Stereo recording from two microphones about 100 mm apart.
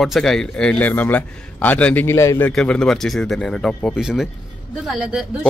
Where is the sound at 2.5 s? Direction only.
5° left (ahead or behind).